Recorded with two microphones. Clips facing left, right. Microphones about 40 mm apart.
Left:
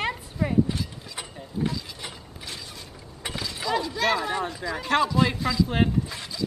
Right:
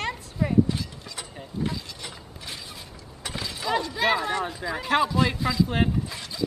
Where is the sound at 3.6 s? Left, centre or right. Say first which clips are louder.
Right 1 dB; centre.